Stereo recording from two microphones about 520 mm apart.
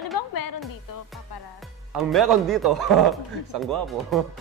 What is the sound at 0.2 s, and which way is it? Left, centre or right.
Music, left.